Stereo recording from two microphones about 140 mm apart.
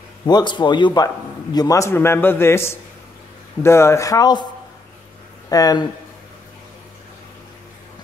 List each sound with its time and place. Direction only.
0.3 s a man's voice: 30° left (ahead or behind)
5.5 s a man's voice: 25° left (ahead or behind)